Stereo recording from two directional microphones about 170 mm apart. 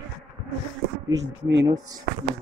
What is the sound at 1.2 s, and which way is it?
Speech, 90° right.